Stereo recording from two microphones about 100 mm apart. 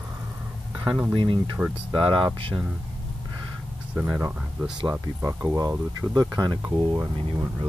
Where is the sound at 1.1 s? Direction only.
55° right (ahead or behind).